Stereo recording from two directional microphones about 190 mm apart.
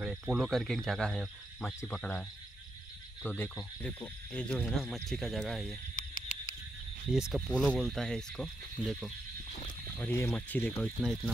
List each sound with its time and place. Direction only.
0.0 s speech: 5° right (ahead or behind)
3.3 s speech: 5° left (ahead or behind)
5.9 s a sound: 45° left (ahead or behind)
7.1 s speech: 5° right (ahead or behind)